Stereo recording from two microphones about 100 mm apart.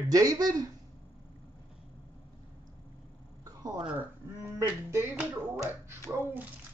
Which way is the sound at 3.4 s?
35° right (ahead or behind).